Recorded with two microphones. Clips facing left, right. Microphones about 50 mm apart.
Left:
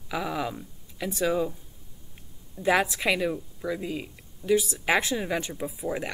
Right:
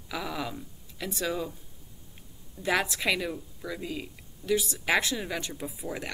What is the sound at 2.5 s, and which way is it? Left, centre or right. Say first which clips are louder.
Speech: left 4 dB; centre.